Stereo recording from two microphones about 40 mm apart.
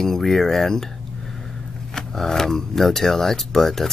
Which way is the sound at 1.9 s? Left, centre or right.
Centre.